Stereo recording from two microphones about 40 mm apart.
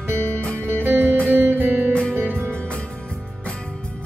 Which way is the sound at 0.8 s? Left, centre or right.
Right.